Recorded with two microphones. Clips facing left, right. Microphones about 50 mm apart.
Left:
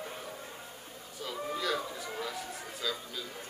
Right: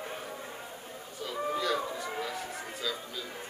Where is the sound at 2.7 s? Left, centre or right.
Centre.